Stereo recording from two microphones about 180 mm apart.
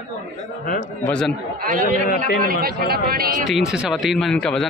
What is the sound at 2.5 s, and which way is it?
Speech, 55° right (ahead or behind).